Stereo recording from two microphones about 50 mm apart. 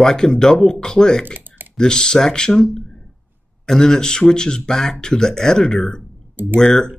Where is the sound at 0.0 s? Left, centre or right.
Centre.